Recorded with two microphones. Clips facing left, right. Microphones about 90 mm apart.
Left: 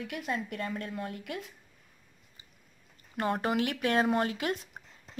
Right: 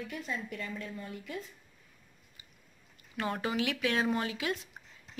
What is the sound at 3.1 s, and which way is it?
A woman's voice, 45° left (ahead or behind).